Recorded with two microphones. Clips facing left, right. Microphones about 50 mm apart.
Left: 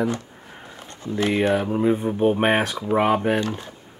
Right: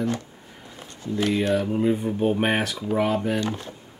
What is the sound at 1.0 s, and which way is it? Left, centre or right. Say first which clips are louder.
Speech: left 2 dB; centre.